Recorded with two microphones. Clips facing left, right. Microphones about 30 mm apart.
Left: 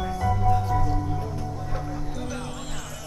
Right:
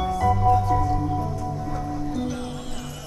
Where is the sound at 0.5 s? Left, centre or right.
Centre.